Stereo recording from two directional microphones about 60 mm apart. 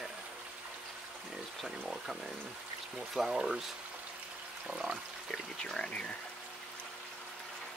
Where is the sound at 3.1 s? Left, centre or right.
Centre.